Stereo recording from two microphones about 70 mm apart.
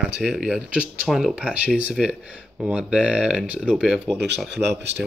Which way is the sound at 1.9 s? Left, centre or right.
Centre.